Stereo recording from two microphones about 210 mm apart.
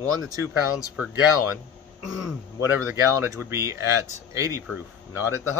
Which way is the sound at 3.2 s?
10° right (ahead or behind).